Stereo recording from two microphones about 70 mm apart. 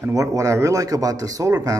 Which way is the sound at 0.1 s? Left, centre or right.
Right.